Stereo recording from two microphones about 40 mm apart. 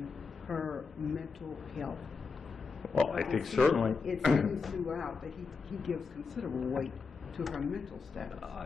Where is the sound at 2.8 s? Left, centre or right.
Centre.